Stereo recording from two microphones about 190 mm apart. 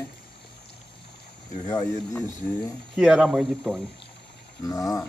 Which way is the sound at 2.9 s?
5° right (ahead or behind).